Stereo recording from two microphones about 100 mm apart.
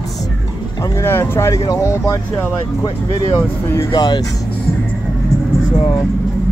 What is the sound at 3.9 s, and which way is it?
Speech, 45° left (ahead or behind).